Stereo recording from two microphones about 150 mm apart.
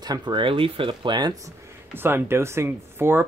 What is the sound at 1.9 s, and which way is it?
Speech, 15° right (ahead or behind).